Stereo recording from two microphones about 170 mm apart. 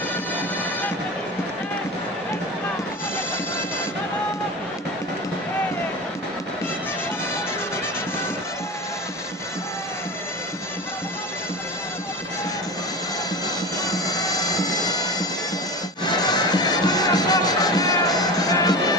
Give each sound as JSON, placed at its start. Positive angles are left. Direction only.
{"t": 13.8, "sound": "bagpipes", "side_deg": 20}
{"t": 16.1, "sound": "music", "side_deg": 25}